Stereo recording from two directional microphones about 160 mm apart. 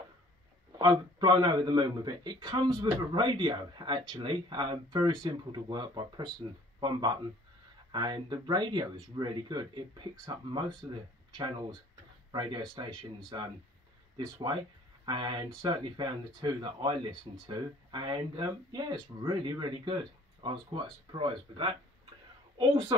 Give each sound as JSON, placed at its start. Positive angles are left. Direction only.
{"t": 0.7, "sound": "speech", "side_deg": -30}